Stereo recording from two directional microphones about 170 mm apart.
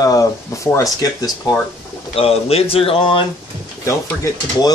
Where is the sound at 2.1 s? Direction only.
35° left (ahead or behind).